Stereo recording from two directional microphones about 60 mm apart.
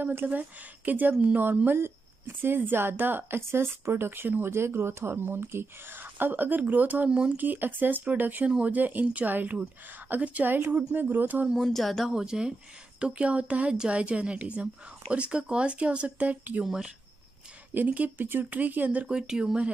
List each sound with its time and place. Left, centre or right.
0.0 s speech: right
7.1 s speech: centre
7.3 s speech: right
8.5 s speech: centre
8.7 s speech: right
11.5 s speech: centre
12.1 s speech: centre
16.6 s speech: centre
17.7 s speech: right
19.0 s speech: centre